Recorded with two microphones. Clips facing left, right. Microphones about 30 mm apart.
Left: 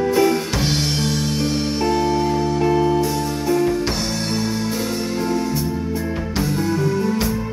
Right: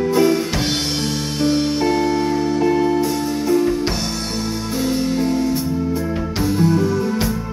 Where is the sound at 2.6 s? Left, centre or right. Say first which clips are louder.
Right 1 dB; centre.